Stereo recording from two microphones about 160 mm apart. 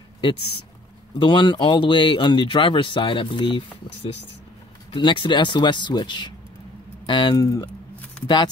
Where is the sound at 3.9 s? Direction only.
90° left.